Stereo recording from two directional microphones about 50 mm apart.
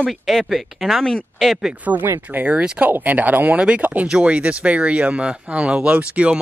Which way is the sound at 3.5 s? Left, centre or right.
Right.